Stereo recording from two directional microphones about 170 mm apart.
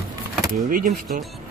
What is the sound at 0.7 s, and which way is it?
Speech, 55° right (ahead or behind).